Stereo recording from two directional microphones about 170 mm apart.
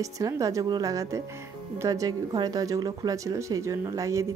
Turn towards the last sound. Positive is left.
turn(degrees=-20)  # may be behind; listen again after turning